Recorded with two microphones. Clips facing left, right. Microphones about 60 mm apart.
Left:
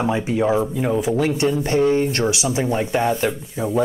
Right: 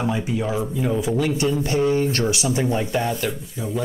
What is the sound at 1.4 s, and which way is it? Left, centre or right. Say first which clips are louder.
Speech: left 4 dB; left.